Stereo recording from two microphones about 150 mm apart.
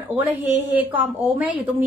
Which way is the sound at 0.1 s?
10° right (ahead or behind).